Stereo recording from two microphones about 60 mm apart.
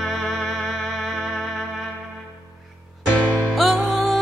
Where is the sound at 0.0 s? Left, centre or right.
Centre.